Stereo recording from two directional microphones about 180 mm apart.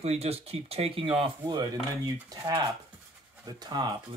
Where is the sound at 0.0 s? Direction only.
35° right (ahead or behind).